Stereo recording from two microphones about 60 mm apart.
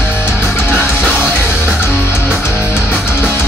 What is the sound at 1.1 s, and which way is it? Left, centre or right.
Music, right.